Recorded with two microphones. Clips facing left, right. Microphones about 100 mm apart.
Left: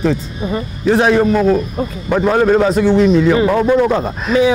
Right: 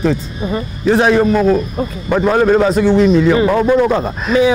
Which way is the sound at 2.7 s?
Centre (ahead or behind).